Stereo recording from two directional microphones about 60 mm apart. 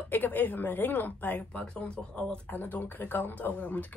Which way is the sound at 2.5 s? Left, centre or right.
Left.